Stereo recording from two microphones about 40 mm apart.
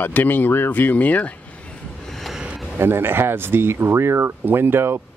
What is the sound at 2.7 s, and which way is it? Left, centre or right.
Speech, right.